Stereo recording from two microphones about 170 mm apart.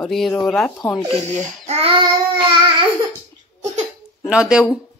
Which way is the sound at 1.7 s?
35° right (ahead or behind).